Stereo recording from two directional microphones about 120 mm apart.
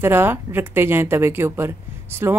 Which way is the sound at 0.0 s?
20° right (ahead or behind).